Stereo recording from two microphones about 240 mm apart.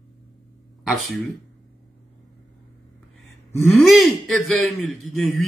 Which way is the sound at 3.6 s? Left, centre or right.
Centre.